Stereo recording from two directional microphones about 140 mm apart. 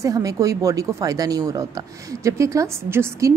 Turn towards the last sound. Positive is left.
turn(degrees=-20)  # may be behind; listen again after turning